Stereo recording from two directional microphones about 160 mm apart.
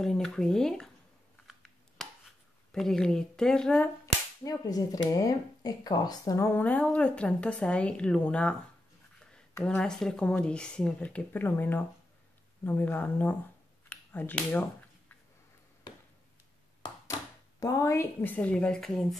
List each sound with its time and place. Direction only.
0.0 s speech: 5° left (ahead or behind)
1.5 s a sound: centre (ahead or behind)
2.7 s speech: 5° left (ahead or behind)
4.0 s cap gun: 20° left (ahead or behind)
5.1 s speech: 25° left (ahead or behind)
16.8 s speech: 25° left (ahead or behind); by 19.1 s centre (ahead or behind)